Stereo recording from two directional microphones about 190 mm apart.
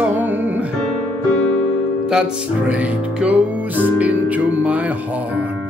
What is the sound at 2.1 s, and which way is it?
Music, 5° right (ahead or behind).